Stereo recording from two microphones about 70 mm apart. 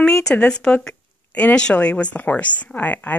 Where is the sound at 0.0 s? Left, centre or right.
Centre.